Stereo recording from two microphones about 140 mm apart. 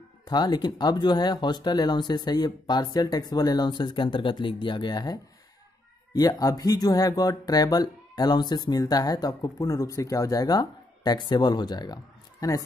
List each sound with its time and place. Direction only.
0.3 s speech: 30° left (ahead or behind)